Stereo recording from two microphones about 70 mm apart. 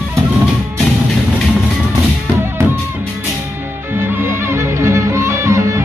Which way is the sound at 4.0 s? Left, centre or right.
Right.